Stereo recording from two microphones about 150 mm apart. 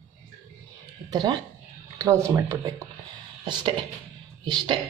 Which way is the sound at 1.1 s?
25° right (ahead or behind).